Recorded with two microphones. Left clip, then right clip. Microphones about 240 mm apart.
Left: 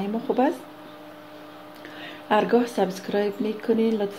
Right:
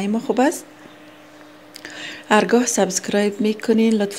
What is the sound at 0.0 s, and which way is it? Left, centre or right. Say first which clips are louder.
Speech: right 4 dB; right.